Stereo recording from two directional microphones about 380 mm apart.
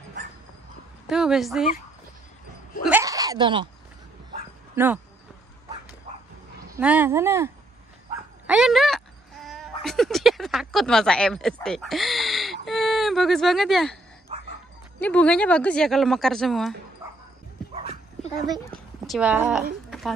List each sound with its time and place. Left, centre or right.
1.0 s speech: centre
2.8 s a sound: centre
4.3 s dog: centre
6.1 s bow-wow: centre
6.8 s speech: centre
8.5 s a sound: centre
15.0 s speech: centre
17.0 s music: centre
19.0 s speech: centre
19.9 s a sound: centre